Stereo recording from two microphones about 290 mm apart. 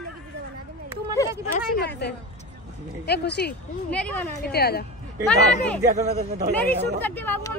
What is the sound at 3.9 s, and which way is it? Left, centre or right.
Speech, centre.